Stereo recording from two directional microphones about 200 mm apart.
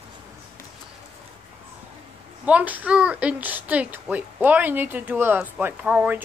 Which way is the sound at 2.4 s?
5° right (ahead or behind).